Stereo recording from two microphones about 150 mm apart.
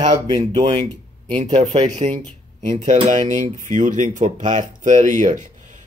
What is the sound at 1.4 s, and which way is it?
Speech, 50° right (ahead or behind).